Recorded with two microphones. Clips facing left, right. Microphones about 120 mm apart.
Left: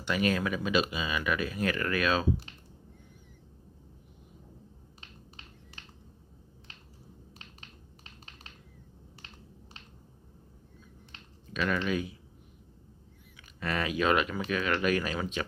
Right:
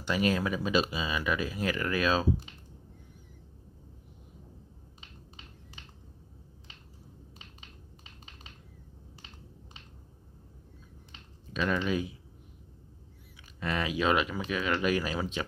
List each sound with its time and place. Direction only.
0.0 s speech: 25° right (ahead or behind)
11.5 s speech: 20° right (ahead or behind)
13.6 s speech: 20° right (ahead or behind)